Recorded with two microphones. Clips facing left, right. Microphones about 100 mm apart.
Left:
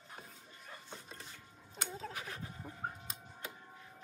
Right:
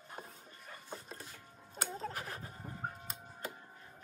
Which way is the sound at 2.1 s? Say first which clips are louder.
Right 1 dB; 35° right (ahead or behind).